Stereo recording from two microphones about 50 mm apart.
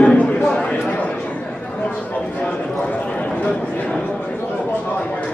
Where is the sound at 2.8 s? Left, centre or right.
Left.